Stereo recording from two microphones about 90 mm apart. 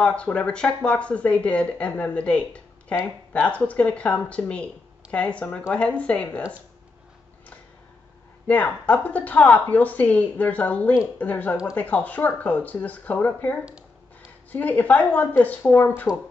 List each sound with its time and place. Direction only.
0.0 s speech: 15° left (ahead or behind)
8.5 s speech: 15° left (ahead or behind)